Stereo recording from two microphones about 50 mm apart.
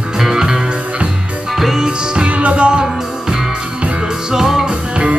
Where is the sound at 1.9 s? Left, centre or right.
Centre.